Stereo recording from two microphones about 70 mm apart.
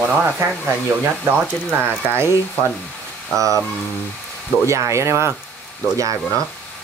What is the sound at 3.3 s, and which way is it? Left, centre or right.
Speech, right.